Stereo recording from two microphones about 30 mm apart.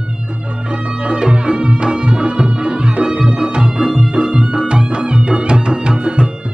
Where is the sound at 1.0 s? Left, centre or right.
Right.